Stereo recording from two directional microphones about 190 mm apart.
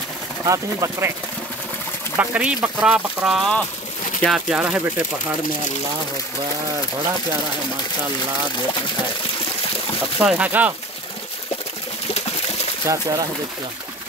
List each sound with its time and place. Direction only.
0.5 s speech: 15° right (ahead or behind)
2.1 s speech: 10° right (ahead or behind)
10.2 s speech: 5° right (ahead or behind)
12.8 s speech: 20° right (ahead or behind)